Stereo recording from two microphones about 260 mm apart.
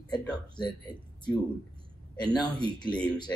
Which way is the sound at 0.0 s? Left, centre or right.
Centre.